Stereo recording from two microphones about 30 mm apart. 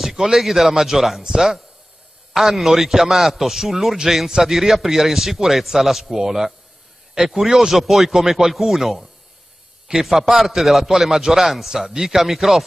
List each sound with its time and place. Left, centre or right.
0.1 s a sound: centre
0.4 s a man's voice: centre
2.3 s a man's voice: centre
11.7 s a man's voice: centre
12.2 s a man's voice: centre